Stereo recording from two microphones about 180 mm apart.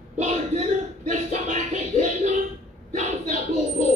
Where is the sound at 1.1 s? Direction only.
40° right (ahead or behind).